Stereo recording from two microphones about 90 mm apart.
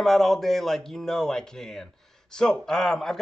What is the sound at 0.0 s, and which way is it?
Speech, centre (ahead or behind).